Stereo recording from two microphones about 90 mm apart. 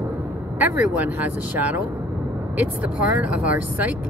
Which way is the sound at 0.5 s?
20° right (ahead or behind).